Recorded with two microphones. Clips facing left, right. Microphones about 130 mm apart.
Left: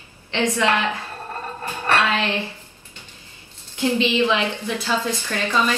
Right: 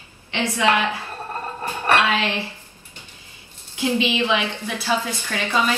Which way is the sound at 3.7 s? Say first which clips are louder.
Left 2 dB; 15° right (ahead or behind).